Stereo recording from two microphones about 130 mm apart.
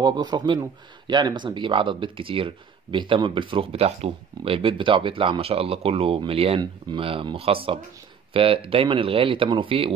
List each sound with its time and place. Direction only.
0.0 s speech: 30° right (ahead or behind)